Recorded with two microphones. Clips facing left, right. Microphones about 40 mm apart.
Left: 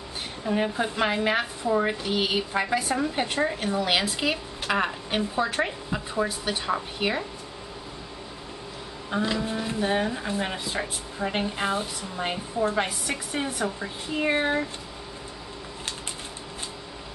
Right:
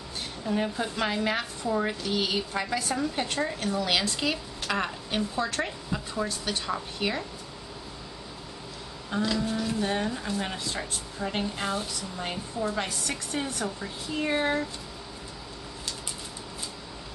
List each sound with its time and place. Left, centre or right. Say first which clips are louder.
0.5 s a woman's voice: left 3 dB; left
9.1 s a woman's voice: left 1 dB; left